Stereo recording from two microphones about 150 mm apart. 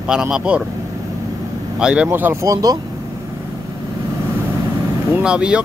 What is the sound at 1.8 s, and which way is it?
Speech, 10° right (ahead or behind).